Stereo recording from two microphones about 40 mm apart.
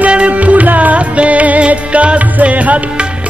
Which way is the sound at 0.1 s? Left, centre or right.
Right.